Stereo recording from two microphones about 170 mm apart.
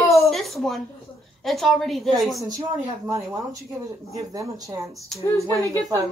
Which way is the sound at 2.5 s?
20° right (ahead or behind).